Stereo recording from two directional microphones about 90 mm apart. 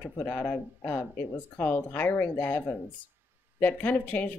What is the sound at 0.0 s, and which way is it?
Speech, 20° left (ahead or behind).